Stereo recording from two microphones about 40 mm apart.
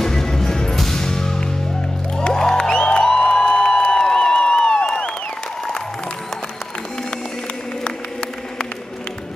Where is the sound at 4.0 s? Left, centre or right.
Centre.